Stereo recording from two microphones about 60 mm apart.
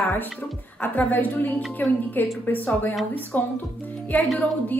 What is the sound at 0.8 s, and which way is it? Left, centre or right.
A woman's voice, left.